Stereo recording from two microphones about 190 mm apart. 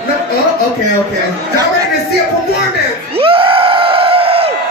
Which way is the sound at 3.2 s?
30° right (ahead or behind).